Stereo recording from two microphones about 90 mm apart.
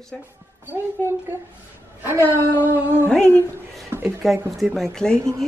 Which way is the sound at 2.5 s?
20° left (ahead or behind).